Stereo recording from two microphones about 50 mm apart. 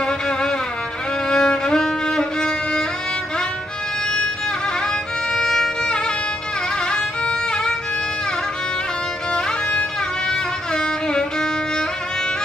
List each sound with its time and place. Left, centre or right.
0.0 s music: centre
5.3 s music: centre
6.9 s violin: centre
9.3 s music: centre